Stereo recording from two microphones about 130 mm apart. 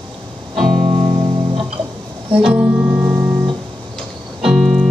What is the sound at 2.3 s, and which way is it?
Music, 5° right (ahead or behind).